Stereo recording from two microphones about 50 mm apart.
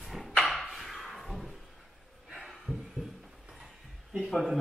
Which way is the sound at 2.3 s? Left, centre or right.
Centre.